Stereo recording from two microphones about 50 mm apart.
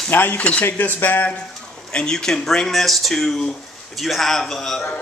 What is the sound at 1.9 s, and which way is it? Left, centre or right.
A man's voice, centre.